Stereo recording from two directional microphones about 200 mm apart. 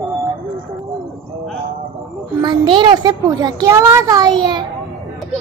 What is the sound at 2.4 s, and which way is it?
A child's voice, 25° right (ahead or behind).